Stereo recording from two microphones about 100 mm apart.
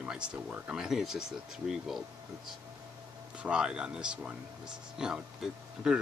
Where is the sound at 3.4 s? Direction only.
10° right (ahead or behind).